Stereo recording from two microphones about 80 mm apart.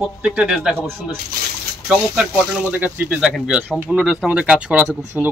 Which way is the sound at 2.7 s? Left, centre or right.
Right.